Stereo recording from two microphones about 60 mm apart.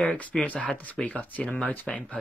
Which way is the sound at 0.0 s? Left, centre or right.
Centre.